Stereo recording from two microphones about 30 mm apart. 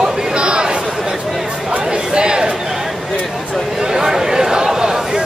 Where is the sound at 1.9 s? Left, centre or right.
Right.